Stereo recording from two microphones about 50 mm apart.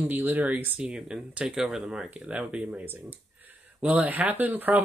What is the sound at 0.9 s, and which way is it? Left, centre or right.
Speech, centre.